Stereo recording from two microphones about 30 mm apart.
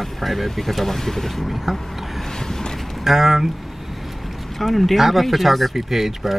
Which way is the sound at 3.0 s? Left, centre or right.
Centre.